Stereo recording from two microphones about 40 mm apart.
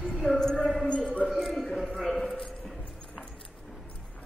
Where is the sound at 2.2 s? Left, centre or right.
Centre.